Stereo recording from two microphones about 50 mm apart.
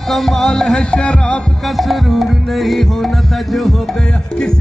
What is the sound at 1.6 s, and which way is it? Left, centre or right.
Music, centre.